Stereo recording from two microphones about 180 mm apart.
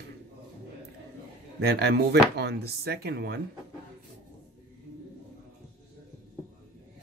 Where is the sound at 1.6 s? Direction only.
65° right (ahead or behind).